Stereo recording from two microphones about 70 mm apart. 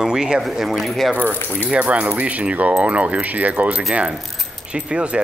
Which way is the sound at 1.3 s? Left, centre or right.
Left.